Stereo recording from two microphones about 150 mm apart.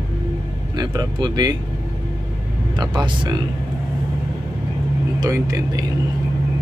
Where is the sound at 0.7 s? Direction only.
25° right (ahead or behind).